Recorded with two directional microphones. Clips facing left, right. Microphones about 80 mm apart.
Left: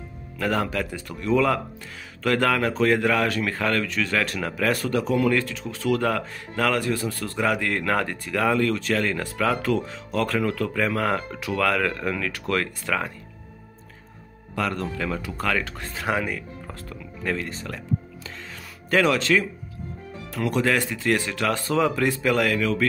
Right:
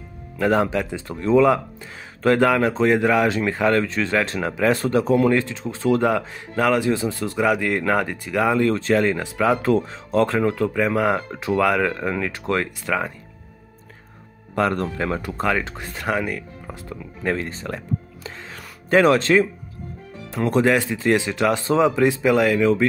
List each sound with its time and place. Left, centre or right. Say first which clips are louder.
0.4 s a man's voice: right 5 dB; right
8.6 s speech: right 5 dB; right
9.6 s speech: right 5 dB; right
11.3 s speech: right 6 dB; right
11.6 s speech: right 2 dB; centre
12.8 s a man's voice: right 3 dB; centre
14.5 s speech: right 5 dB; right
15.4 s speech: right 3 dB; right
15.9 s speech: right 2 dB; centre
16.6 s speech: right 3 dB; centre
17.2 s a sound: right 4 dB; right
18.9 s speech: right 5 dB; right
20.6 s speech: right 4 dB; centre